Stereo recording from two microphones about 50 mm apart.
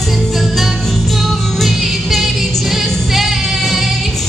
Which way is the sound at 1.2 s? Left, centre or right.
Centre.